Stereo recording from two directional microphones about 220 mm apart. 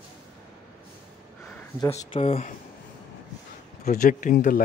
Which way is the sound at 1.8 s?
15° left (ahead or behind).